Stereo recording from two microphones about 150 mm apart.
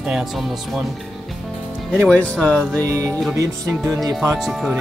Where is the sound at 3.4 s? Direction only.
20° right (ahead or behind).